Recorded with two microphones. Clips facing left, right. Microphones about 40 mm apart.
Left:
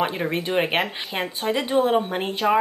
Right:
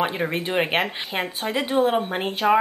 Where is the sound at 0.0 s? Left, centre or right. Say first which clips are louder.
Even; centre.